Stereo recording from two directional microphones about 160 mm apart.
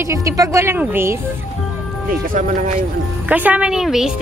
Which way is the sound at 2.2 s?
55° right (ahead or behind).